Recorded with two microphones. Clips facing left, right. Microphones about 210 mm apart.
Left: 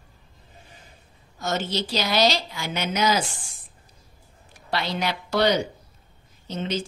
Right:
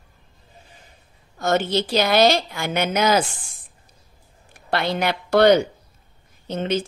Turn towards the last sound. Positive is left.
turn(degrees=-55)  # may be behind; listen again after turning